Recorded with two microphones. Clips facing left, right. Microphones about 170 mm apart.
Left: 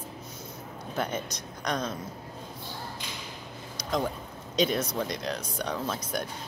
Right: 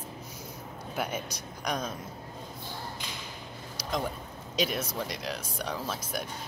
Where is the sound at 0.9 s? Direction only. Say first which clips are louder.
Left 2 dB; 10° right (ahead or behind).